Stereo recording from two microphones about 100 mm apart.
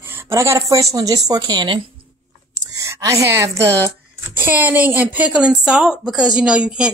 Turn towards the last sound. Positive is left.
turn(degrees=-10)  # may be behind; listen again after turning